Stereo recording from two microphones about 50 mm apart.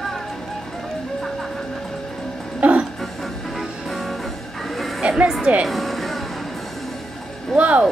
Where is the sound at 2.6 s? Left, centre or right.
Right.